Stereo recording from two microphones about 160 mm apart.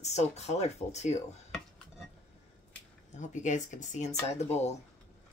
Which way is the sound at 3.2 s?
50° left (ahead or behind).